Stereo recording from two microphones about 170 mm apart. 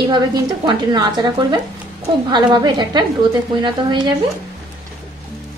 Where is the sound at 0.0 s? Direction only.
25° right (ahead or behind).